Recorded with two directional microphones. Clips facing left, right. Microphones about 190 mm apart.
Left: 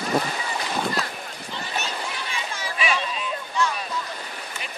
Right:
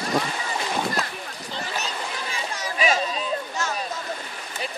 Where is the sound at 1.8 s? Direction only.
35° right (ahead or behind).